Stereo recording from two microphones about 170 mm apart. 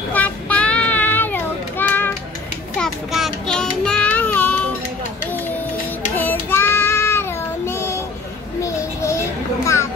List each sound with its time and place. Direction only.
0.1 s child singing: 10° left (ahead or behind)
2.8 s child singing: centre (ahead or behind)
6.1 s child singing: 10° left (ahead or behind)
8.6 s a sound: 15° left (ahead or behind)